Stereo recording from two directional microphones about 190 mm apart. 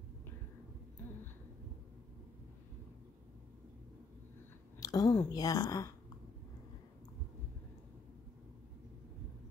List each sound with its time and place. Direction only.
4.7 s speech: 20° left (ahead or behind)